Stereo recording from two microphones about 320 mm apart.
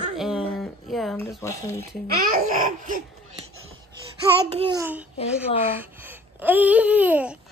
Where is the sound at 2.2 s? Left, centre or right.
Right.